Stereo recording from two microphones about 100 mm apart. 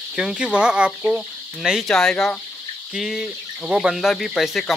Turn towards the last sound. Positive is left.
turn(degrees=0)  # may be behind; listen again after turning